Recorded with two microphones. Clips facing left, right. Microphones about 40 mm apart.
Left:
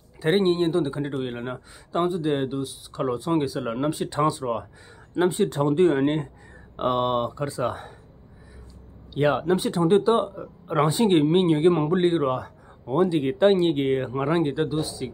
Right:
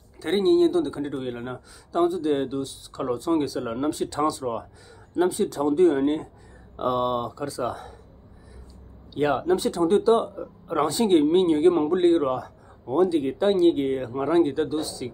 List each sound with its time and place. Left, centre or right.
0.2 s speech: left
2.1 s speech: centre; by 8.0 s left
9.1 s speech: centre
9.4 s speech: left
13.2 s speech: left
14.5 s speech: centre